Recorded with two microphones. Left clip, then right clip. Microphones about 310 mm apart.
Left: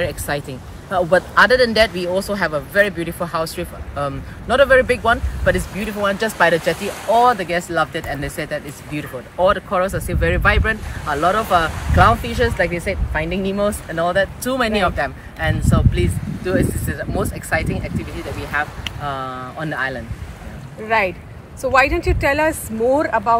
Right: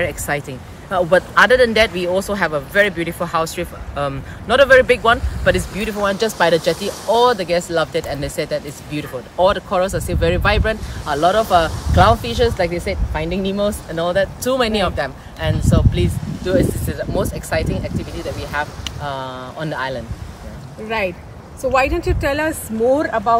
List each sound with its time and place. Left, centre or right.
0.0 s speech: centre
21.6 s speech: centre
22.0 s speech: centre
22.9 s speech: centre